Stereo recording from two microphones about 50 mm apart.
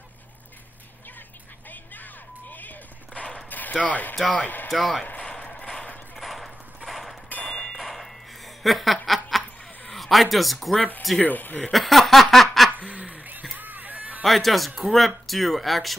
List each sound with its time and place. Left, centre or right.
3.4 s dog: left
3.7 s speech: left
4.6 s speech: centre
5.5 s a sound: centre
6.1 s clip-clop: centre
7.4 s a sound: centre
8.6 s snicker: centre
9.8 s speech: centre
11.2 s speech: left
11.7 s a sound: centre
13.1 s a sound: right
14.2 s speech: centre